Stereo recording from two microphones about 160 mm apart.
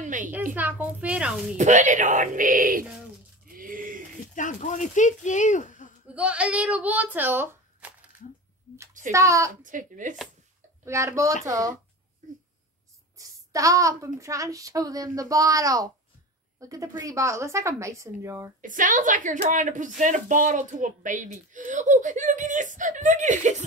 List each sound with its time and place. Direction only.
0.0 s a sound: 55° right (ahead or behind)
0.6 s a child's voice: 10° right (ahead or behind)
1.6 s a woman's voice: 50° right (ahead or behind)
3.4 s a sound: 60° right (ahead or behind)
4.4 s speech: 50° left (ahead or behind)
6.1 s speech: 10° right (ahead or behind)
9.1 s a woman's voice: 20° right (ahead or behind)
9.5 s a woman's voice: 55° right (ahead or behind)
10.9 s a child's voice: 20° right (ahead or behind)
12.2 s a sound: 55° right (ahead or behind)
13.2 s a woman's voice: 20° right (ahead or behind)
18.6 s a woman's voice: 55° right (ahead or behind)